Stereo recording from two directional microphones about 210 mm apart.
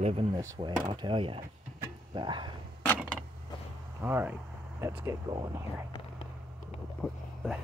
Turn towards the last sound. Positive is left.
turn(degrees=0)  # may be behind; listen again after turning